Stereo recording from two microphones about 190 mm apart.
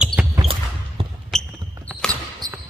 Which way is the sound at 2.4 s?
20° right (ahead or behind).